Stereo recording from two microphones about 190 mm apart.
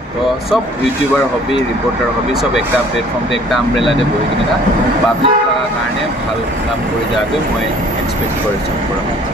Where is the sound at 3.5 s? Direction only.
Centre (ahead or behind).